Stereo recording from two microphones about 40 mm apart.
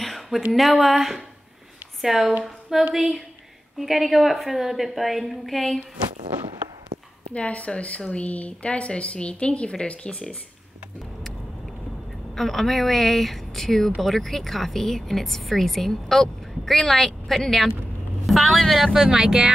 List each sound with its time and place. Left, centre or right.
0.0 s a sound: centre
0.5 s speech: centre
7.3 s a woman's voice: left
12.4 s speech: centre
18.2 s speech: centre
18.9 s speech: centre